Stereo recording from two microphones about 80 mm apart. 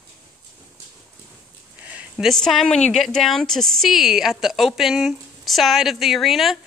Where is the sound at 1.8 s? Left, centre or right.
Centre.